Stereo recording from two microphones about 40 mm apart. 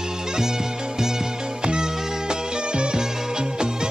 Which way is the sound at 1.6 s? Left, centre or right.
Centre.